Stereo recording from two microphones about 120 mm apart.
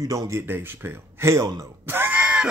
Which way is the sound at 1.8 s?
15° right (ahead or behind).